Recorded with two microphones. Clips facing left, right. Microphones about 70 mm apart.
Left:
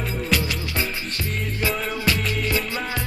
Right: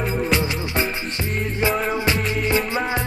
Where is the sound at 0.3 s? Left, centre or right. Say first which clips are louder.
Right 3 dB; right.